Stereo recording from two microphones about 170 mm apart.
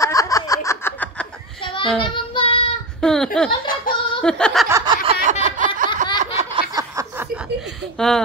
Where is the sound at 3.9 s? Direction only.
55° left (ahead or behind).